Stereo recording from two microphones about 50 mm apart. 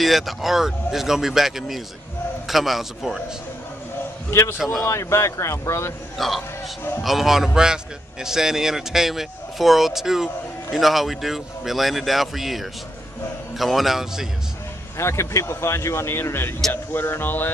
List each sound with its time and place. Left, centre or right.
0.0 s a man's voice: centre
4.3 s a man's voice: left
4.8 s speech: left
6.1 s a man's voice: centre
15.0 s speech: left